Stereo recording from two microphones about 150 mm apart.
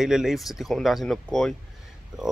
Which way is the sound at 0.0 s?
5° right (ahead or behind).